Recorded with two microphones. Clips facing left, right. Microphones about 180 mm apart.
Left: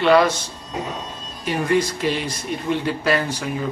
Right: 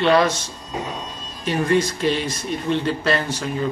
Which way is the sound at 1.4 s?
10° left (ahead or behind).